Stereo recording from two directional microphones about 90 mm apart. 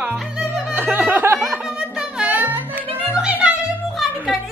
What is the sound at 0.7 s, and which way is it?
Speech, 20° right (ahead or behind).